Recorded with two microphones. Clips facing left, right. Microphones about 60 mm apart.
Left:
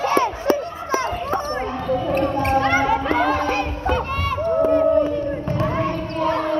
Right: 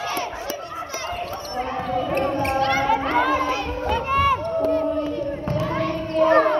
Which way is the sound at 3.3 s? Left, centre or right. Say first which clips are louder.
Left 2 dB; left.